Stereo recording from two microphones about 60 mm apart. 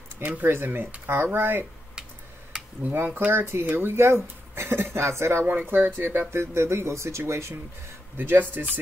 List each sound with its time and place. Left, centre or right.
0.5 s speech: right
2.8 s speech: right
8.2 s speech: right